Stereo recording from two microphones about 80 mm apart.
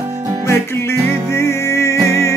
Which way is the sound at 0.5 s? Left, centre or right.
Left.